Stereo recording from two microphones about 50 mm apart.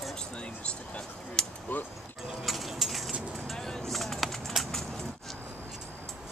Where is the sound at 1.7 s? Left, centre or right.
Left.